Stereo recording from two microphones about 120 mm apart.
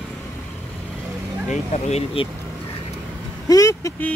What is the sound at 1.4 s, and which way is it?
Speech, 70° left (ahead or behind).